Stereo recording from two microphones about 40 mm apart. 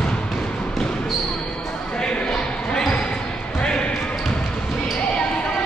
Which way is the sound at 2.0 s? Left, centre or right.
Centre.